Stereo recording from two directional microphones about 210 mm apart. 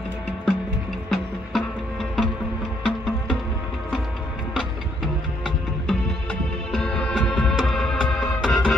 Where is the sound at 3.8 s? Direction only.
Centre (ahead or behind).